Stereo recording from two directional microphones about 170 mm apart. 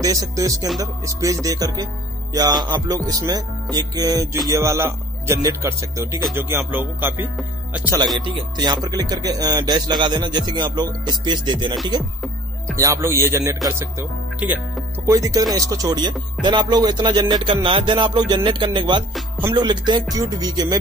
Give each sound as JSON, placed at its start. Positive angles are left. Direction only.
{"t": 0.0, "sound": "speech", "side_deg": -20}
{"t": 8.5, "sound": "speech", "side_deg": -25}
{"t": 12.7, "sound": "speech", "side_deg": -15}